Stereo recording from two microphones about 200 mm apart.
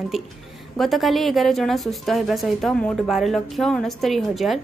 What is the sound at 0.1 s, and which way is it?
A woman's voice, centre (ahead or behind).